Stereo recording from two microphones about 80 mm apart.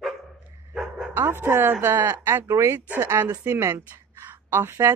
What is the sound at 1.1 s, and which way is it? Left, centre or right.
Speech, right.